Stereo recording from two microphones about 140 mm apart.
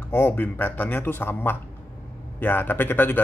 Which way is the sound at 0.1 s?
15° left (ahead or behind).